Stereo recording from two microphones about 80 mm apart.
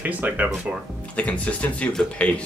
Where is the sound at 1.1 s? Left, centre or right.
Centre.